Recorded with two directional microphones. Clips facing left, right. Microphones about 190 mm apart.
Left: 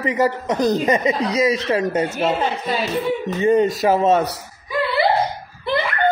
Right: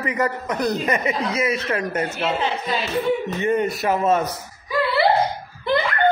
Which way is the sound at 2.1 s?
45° left (ahead or behind).